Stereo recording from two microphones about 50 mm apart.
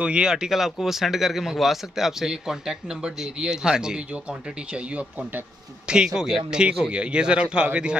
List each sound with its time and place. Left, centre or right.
0.0 s speech: centre
4.1 s speech: right
5.9 s speech: centre
6.9 s speech: right